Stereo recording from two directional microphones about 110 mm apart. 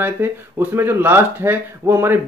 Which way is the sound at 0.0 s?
20° right (ahead or behind).